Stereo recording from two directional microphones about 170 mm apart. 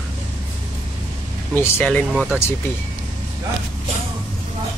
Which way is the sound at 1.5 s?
10° left (ahead or behind).